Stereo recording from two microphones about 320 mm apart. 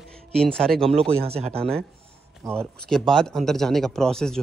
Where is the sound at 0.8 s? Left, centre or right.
Centre.